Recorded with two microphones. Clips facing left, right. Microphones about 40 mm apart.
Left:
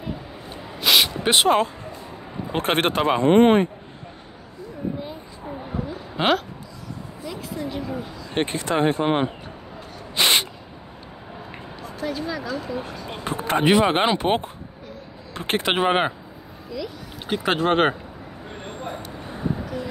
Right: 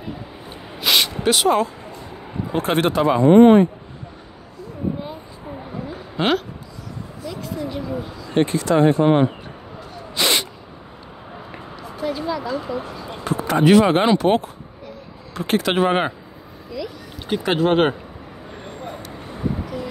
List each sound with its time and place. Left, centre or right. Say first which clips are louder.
0.7 s a sound: even; centre
1.2 s speech: right 1 dB; left
6.1 s speech: right 1 dB; centre
8.4 s speech: right 5 dB; left
10.1 s sneeze: even; left
11.8 s a sound: right 3 dB; centre
12.4 s speech: right 3 dB; right
13.2 s basketball bounce: right 3 dB; left
13.7 s speech: right 4 dB; centre
15.3 s a sound: right 4 dB; left
15.6 s speech: even; centre
16.7 s speech: right 2 dB; centre